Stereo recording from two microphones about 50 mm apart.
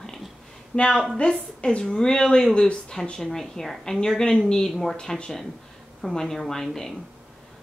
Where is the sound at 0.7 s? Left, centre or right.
Centre.